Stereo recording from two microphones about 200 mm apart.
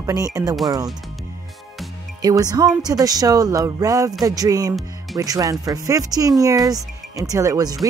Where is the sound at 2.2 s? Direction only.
20° right (ahead or behind).